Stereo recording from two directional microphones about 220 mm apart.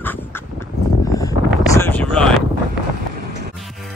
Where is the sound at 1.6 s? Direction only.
10° left (ahead or behind).